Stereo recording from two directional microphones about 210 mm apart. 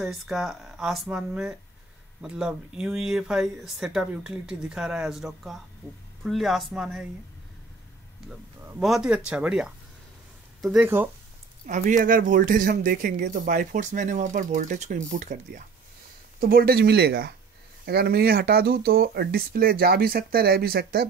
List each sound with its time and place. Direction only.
0.0 s speech: centre (ahead or behind)
8.3 s speech: centre (ahead or behind)
11.6 s speech: 35° right (ahead or behind)